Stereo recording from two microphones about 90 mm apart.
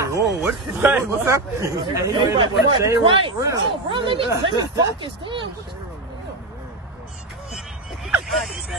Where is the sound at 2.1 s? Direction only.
70° right (ahead or behind).